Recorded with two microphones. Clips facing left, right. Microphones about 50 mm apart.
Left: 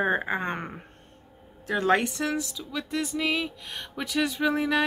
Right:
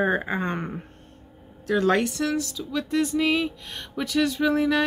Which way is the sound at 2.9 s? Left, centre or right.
Centre.